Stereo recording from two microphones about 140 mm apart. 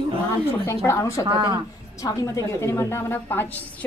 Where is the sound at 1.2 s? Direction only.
35° right (ahead or behind).